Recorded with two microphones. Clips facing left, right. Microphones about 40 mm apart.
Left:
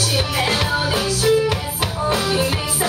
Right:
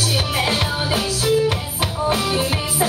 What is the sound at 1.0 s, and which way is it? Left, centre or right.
Music, right.